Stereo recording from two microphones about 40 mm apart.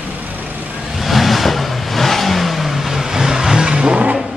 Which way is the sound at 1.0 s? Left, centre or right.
Centre.